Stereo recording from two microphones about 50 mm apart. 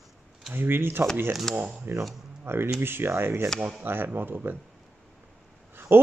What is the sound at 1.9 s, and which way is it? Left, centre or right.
Speech, right.